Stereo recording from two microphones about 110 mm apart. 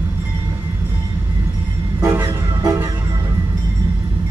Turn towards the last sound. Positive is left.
turn(degrees=-30)  # may be behind; listen again after turning